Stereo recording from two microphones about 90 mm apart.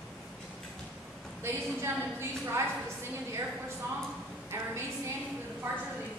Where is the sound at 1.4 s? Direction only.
30° right (ahead or behind).